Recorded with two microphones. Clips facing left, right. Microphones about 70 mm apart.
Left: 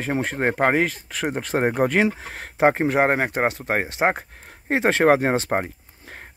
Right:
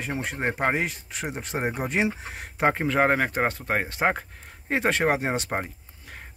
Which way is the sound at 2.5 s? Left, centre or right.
Left.